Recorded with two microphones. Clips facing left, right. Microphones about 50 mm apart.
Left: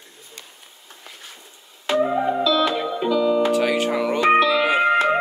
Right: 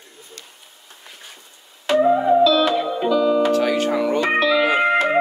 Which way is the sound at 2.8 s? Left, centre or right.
Centre.